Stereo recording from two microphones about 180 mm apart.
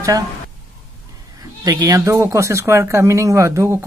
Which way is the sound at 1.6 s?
20° right (ahead or behind).